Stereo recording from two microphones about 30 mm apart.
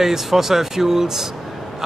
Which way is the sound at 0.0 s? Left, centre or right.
Centre.